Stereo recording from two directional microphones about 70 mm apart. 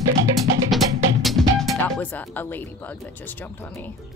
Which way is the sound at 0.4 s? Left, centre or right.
Centre.